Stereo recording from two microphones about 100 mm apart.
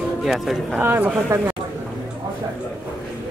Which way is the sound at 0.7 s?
20° right (ahead or behind).